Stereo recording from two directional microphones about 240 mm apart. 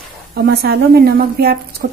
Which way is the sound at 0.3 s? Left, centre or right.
Right.